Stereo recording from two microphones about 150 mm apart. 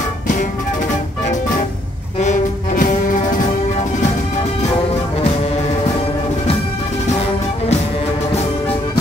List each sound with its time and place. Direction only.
2.1 s brass instrument: 55° left (ahead or behind)